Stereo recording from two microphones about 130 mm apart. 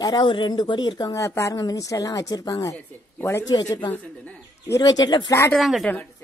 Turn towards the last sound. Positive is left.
turn(degrees=0)  # may be behind; listen again after turning